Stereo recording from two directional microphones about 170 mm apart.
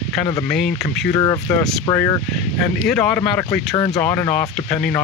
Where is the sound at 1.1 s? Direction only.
20° left (ahead or behind).